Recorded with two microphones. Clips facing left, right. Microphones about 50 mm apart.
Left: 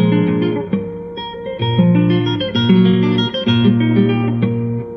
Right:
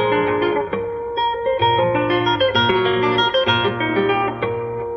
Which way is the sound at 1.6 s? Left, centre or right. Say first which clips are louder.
Left 3 dB; right.